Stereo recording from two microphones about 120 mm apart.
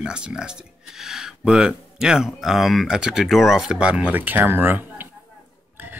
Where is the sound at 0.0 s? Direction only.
5° right (ahead or behind).